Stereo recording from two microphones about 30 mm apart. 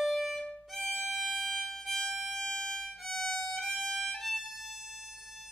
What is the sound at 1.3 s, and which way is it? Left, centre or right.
Violin, centre.